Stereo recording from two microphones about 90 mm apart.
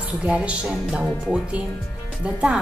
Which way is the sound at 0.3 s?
10° right (ahead or behind).